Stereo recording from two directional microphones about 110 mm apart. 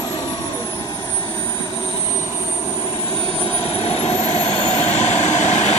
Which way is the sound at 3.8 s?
70° left (ahead or behind).